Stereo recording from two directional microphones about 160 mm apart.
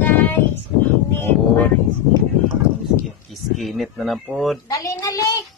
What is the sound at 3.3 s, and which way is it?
Speech, centre (ahead or behind).